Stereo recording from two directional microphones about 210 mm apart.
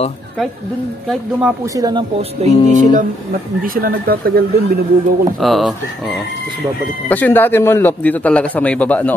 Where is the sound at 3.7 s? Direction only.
45° right (ahead or behind).